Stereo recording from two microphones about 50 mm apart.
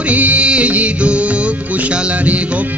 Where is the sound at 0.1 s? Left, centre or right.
Right.